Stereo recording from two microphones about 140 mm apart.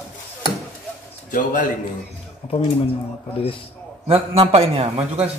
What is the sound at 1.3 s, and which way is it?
Speech, 70° left (ahead or behind).